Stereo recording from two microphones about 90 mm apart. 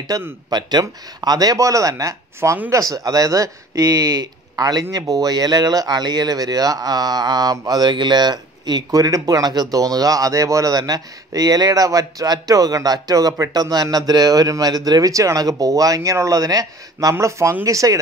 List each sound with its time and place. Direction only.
0.1 s speech: 40° right (ahead or behind)
0.5 s speech: 50° right (ahead or behind)